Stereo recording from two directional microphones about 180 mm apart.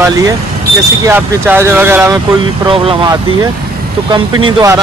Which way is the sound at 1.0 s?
15° right (ahead or behind).